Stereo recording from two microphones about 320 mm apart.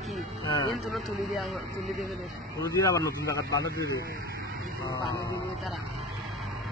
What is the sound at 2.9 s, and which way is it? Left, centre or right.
Speech, centre.